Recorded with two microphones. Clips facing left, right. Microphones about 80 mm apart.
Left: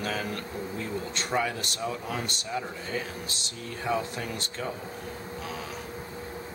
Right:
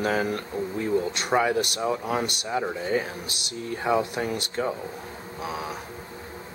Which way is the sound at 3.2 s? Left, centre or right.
Centre.